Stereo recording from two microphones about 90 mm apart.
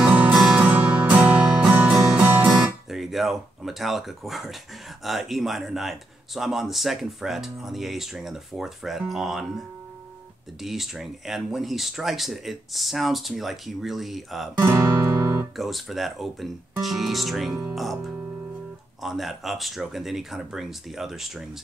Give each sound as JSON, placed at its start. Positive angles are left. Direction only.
{"t": 0.0, "sound": "music", "side_deg": -20}
{"t": 0.3, "sound": "music", "side_deg": -5}
{"t": 0.7, "sound": "music", "side_deg": -20}
{"t": 5.0, "sound": "speech", "side_deg": 0}
{"t": 14.6, "sound": "guitar", "side_deg": -25}
{"t": 15.5, "sound": "speech", "side_deg": 0}